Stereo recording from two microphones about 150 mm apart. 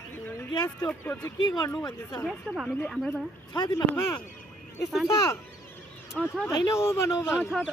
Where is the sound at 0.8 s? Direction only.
10° left (ahead or behind).